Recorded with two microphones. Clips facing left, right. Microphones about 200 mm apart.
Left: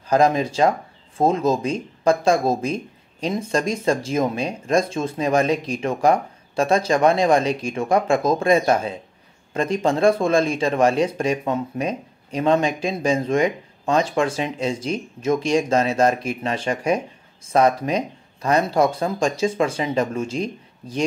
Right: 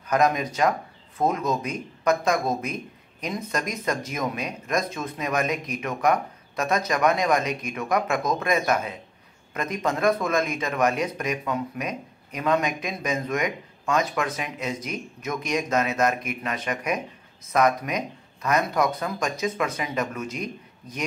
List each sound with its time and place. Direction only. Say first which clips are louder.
0.1 s speech: left 5 dB; 30° left (ahead or behind)